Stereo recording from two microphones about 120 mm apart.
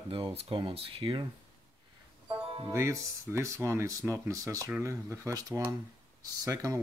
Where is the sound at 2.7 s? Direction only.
25° right (ahead or behind).